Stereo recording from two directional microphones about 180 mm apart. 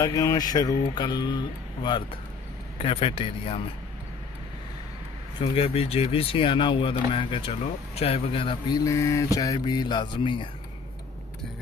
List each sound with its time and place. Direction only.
0.0 s speech: 20° left (ahead or behind)
5.4 s speech: 35° left (ahead or behind)